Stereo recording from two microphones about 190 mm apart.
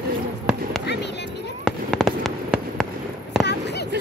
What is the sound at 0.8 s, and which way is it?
Music, 65° left (ahead or behind).